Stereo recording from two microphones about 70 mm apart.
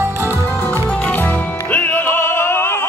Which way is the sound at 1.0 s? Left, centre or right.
Left.